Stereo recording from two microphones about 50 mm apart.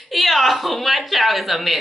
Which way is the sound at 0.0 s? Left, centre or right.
Centre.